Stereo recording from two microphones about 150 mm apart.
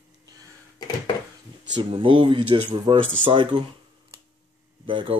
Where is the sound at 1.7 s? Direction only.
35° right (ahead or behind).